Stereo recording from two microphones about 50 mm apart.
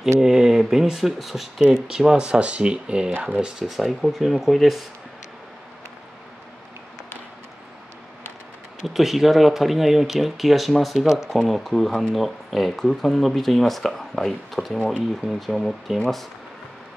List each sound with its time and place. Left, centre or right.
0.2 s speech: centre
3.6 s speech: centre
8.8 s speech: centre